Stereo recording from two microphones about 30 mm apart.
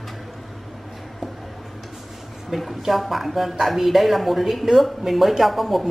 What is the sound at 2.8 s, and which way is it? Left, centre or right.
A woman's voice, centre.